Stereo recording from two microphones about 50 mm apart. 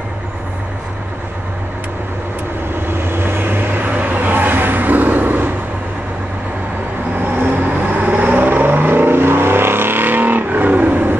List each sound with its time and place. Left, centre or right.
2.9 s vehicle: right
7.2 s vehicle: right